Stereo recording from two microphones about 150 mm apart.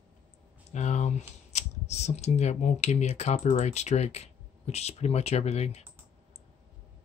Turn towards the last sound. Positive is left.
turn(degrees=45)  # may be behind; listen again after turning